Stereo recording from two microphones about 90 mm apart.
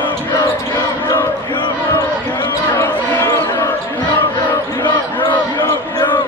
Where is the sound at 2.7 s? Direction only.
25° left (ahead or behind).